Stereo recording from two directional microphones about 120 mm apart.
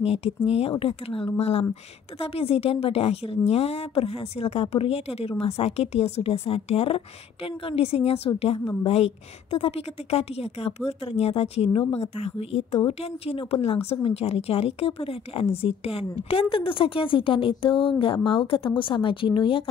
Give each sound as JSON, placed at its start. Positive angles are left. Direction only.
{"t": 0.0, "sound": "a woman's voice", "side_deg": 55}